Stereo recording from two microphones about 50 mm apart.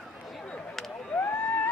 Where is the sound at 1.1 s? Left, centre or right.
Left.